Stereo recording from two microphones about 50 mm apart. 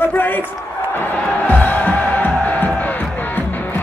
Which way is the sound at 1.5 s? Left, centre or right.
Left.